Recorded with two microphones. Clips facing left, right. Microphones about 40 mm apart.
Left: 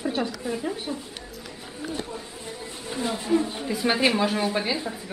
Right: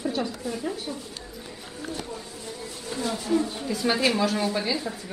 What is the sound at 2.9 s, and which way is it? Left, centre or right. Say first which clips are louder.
Speech: left 1 dB; centre.